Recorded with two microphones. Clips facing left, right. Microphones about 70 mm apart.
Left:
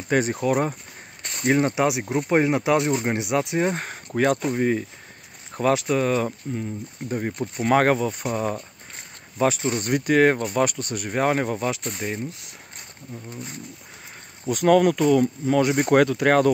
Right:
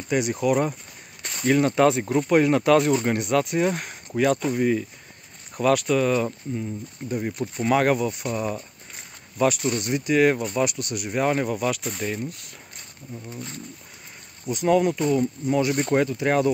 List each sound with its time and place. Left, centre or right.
0.1 s speech: left
1.8 s speech: centre
2.2 s speech: left
5.5 s speech: left
9.4 s speech: left
9.8 s speech: left; by 12.5 s centre
14.5 s speech: left
15.9 s speech: left